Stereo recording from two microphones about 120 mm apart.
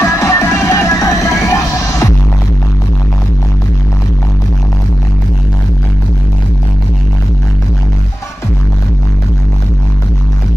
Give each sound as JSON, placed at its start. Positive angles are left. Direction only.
{"t": 0.0, "sound": "music", "side_deg": 25}